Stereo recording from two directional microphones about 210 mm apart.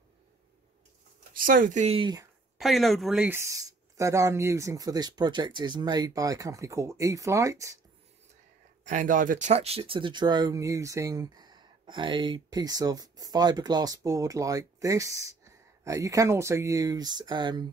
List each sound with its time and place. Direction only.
1.3 s speech: 40° right (ahead or behind); by 2.2 s 20° right (ahead or behind)
2.6 s speech: centre (ahead or behind)
8.8 s speech: 35° right (ahead or behind); by 17.6 s 20° right (ahead or behind)